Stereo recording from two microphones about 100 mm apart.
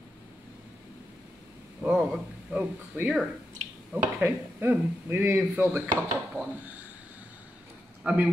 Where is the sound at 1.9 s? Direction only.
10° right (ahead or behind).